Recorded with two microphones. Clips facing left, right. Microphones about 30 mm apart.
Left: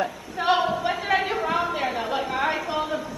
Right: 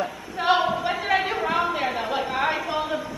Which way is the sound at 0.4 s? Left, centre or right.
Centre.